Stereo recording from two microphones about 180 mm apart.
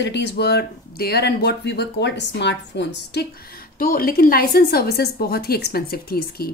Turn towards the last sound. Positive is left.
turn(degrees=60)  # may be behind; listen again after turning